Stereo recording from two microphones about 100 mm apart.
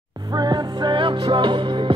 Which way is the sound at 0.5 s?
55° right (ahead or behind).